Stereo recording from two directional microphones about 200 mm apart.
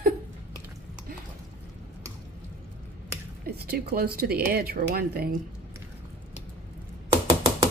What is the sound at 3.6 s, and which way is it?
Speech, 50° right (ahead or behind).